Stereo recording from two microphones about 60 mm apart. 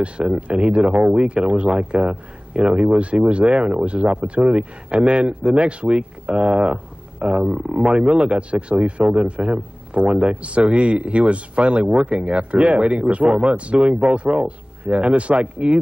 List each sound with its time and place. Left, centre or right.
0.0 s speech: centre